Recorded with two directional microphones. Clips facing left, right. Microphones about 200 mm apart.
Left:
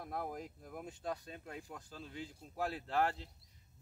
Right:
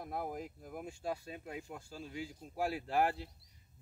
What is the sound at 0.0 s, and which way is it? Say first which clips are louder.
Speech: right 2 dB; 5° right (ahead or behind).